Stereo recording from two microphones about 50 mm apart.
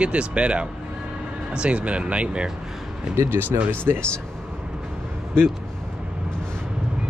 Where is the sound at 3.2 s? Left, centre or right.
Right.